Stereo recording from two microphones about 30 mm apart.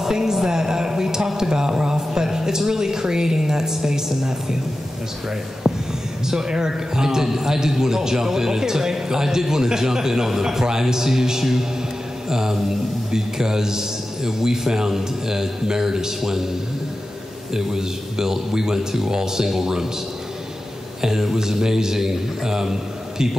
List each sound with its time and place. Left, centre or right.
0.0 s a sound: centre
1.8 s a woman's voice: right
5.6 s whispering: centre
6.2 s a man's voice: right
17.6 s a man's voice: centre
21.0 s a man's voice: centre